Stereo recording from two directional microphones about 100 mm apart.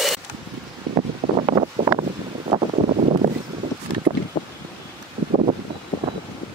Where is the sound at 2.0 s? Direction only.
80° right.